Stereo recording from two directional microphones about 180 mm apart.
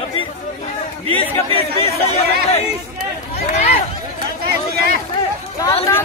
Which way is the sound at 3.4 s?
35° left (ahead or behind).